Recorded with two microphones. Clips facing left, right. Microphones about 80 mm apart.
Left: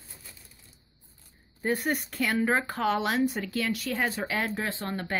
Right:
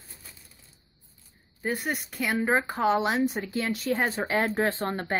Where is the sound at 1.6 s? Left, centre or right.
Centre; by 5.1 s right.